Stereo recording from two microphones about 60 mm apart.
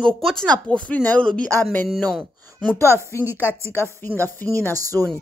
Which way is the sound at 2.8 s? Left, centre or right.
Right.